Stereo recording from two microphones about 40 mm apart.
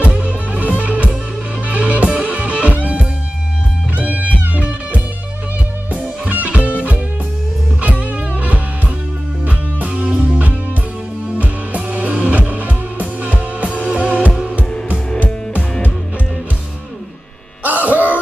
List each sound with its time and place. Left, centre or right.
0.0 s music: right
9.5 s music: right
17.6 s music: right